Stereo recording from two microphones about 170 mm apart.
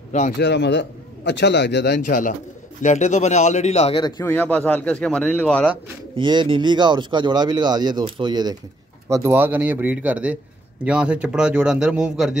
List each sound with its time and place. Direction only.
0.4 s a man's voice: 90° left
2.0 s a man's voice: 50° left (ahead or behind)
4.0 s speech: 15° left (ahead or behind)
6.1 s a man's voice: 30° right (ahead or behind); by 12.4 s 5° right (ahead or behind)